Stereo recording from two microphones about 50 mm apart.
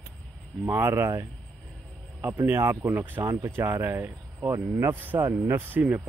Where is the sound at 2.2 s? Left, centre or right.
Right.